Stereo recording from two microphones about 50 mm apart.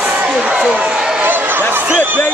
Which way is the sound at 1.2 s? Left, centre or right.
Right.